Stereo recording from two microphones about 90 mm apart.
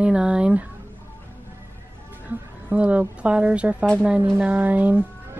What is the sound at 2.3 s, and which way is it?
A woman's voice, 15° right (ahead or behind).